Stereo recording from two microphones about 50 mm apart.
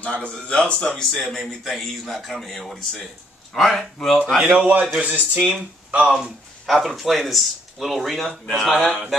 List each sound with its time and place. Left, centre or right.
0.0 s a man's voice: left
1.1 s speech: centre
4.4 s speech: right
5.5 s speech: right
6.6 s speech: centre